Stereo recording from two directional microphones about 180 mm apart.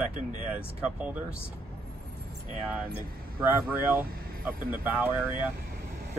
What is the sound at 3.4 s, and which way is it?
Speech, 10° right (ahead or behind).